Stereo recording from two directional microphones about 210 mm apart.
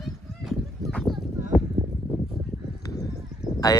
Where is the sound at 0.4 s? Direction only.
Centre (ahead or behind).